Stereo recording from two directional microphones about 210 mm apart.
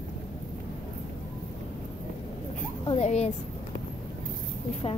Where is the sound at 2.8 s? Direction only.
30° left (ahead or behind).